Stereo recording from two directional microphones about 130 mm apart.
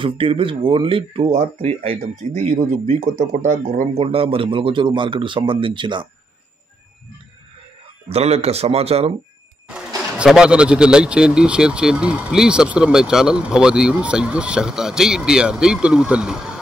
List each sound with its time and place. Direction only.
0.0 s speech: 40° right (ahead or behind); by 3.8 s 80° right
3.9 s speech: 45° right (ahead or behind)
8.1 s speech: 50° right (ahead or behind)
9.7 s speech: 10° right (ahead or behind)